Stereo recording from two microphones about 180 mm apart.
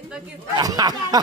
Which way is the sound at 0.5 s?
20° right (ahead or behind).